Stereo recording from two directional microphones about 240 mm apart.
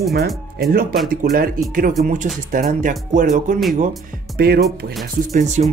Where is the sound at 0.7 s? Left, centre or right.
Right.